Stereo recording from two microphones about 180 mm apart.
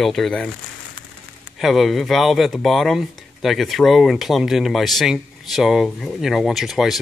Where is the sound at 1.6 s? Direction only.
Centre (ahead or behind).